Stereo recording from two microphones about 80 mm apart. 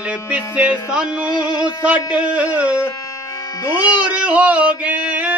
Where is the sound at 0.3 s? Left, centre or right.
Centre.